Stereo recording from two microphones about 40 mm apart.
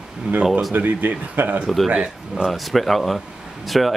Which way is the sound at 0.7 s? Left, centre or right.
Right.